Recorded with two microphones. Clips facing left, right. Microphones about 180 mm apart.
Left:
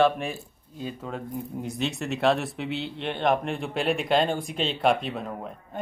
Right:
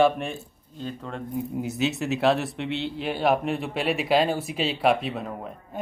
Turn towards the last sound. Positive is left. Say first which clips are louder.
# even
turn(degrees=0)  # may be behind; listen again after turning